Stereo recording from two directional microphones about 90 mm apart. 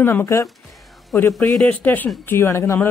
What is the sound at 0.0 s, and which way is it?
Speech, 25° left (ahead or behind).